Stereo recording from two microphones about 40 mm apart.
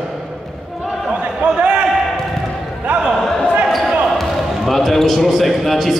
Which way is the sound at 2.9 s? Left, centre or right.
Right.